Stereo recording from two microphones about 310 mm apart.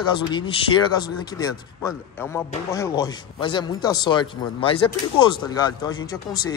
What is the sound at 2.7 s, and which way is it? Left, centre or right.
A man's voice, centre.